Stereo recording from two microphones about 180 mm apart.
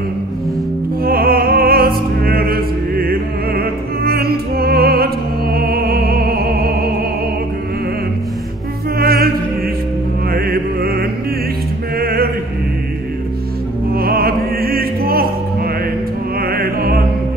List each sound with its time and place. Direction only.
1.0 s opera: 55° right (ahead or behind)
8.9 s music: 55° right (ahead or behind)
10.3 s music: 55° right (ahead or behind)
13.9 s music: 55° right (ahead or behind)